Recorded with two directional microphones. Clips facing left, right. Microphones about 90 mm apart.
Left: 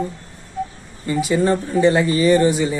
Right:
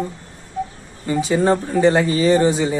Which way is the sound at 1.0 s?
30° right (ahead or behind).